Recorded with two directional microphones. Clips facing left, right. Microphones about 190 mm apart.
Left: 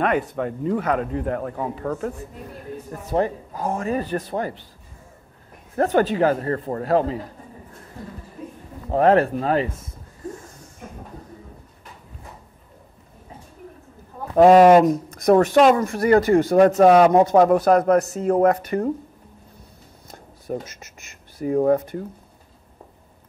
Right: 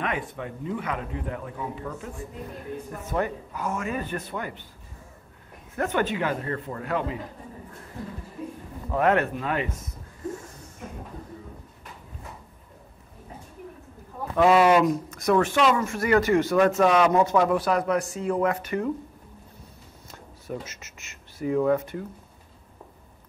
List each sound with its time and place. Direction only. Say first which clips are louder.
0.0 s a man's voice: left 9 dB; 40° left (ahead or behind); by 2.0 s 55° left (ahead or behind)
3.1 s speech: left 6 dB; 35° left (ahead or behind)
5.8 s speech: left 7 dB; 35° left (ahead or behind)
8.9 s speech: left 6 dB; 35° left (ahead or behind)
14.3 s a man's voice: left 7 dB; 40° left (ahead or behind)
20.1 s a sound: left 6 dB; 35° left (ahead or behind)
21.4 s speech: left 4 dB; 40° left (ahead or behind)